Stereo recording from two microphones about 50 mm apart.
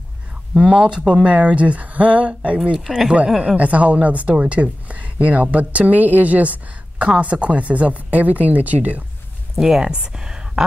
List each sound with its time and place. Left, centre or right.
0.6 s a woman's voice: centre
3.3 s speech: centre
3.5 s a woman's voice: right
9.6 s speech: centre